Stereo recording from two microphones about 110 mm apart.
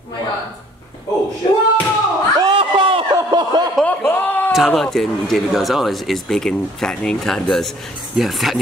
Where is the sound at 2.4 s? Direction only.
50° right (ahead or behind).